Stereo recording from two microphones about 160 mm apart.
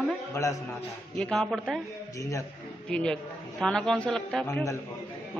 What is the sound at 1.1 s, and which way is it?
Speech, 5° left (ahead or behind).